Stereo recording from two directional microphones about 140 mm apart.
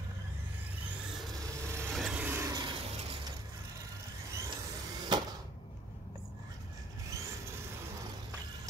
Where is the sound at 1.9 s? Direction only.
Centre (ahead or behind).